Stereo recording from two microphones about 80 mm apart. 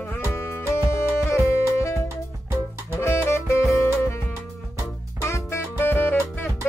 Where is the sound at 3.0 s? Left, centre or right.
Left.